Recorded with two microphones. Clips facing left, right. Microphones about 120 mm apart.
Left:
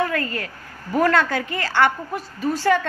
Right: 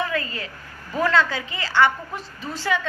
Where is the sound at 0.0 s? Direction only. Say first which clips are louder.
Left 3 dB; 50° left (ahead or behind).